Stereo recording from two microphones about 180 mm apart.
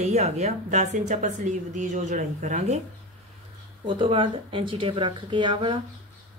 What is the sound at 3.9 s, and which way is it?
Speech, 25° right (ahead or behind).